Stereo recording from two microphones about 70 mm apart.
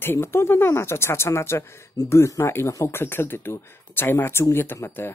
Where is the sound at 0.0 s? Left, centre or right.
Left.